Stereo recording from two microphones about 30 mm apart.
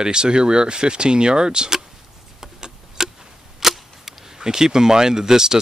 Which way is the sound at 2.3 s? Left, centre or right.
Centre.